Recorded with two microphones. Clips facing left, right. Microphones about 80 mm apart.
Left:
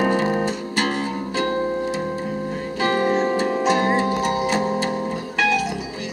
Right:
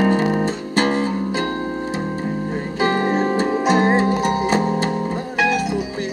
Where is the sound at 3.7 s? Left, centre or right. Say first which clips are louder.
Right 4 dB; right.